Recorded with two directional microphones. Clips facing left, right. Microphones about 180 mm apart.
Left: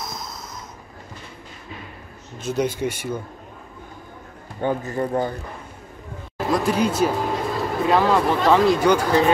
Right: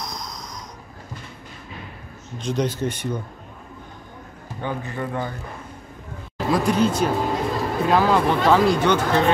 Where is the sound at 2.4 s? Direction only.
10° left (ahead or behind).